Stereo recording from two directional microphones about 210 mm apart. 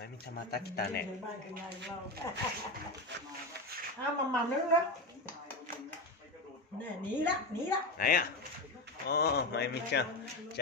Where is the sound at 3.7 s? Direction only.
45° right (ahead or behind).